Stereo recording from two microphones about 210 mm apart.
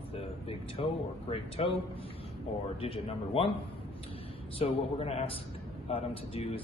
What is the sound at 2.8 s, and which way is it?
Speech, 25° left (ahead or behind).